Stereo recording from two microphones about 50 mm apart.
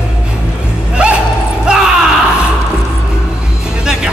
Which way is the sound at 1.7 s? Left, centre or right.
Centre.